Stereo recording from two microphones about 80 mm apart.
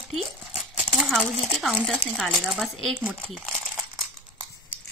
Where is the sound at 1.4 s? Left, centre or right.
Centre.